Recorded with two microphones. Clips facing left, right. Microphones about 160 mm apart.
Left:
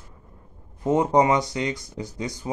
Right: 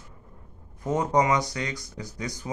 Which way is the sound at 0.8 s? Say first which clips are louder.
Left 4 dB; 25° left (ahead or behind).